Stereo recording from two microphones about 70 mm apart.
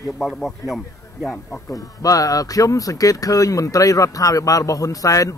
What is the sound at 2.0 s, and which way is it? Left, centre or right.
Speech, left.